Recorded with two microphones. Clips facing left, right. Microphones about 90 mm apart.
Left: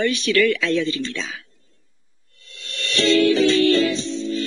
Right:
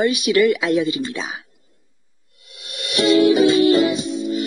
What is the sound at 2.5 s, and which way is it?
Music, 15° right (ahead or behind).